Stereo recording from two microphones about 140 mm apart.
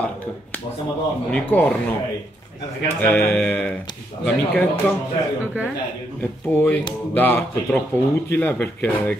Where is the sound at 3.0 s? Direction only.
10° left (ahead or behind).